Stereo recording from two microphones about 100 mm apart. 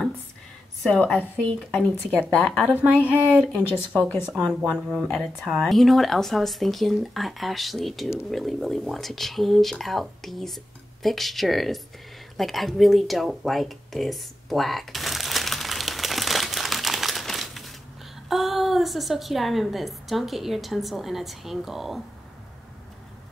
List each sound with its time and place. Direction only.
0.8 s a woman's voice: 10° left (ahead or behind)
3.5 s speech: 20° left (ahead or behind)
4.3 s a woman's voice: 5° right (ahead or behind)
12.4 s a sound: centre (ahead or behind)
18.3 s a woman's voice: centre (ahead or behind)